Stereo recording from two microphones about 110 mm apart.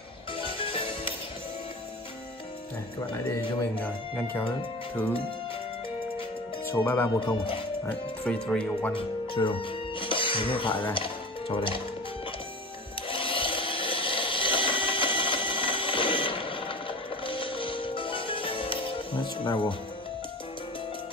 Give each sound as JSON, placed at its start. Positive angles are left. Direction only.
{"t": 0.4, "sound": "music", "side_deg": 55}
{"t": 6.7, "sound": "speech", "side_deg": 20}
{"t": 7.2, "sound": "speech", "side_deg": 50}
{"t": 7.9, "sound": "speech", "side_deg": 10}
{"t": 8.9, "sound": "music", "side_deg": 50}
{"t": 13.1, "sound": "a sound", "side_deg": 55}